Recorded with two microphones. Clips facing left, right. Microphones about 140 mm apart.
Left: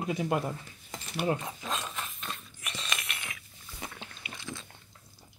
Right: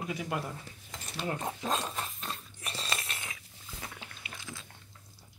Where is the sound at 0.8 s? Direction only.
15° left (ahead or behind).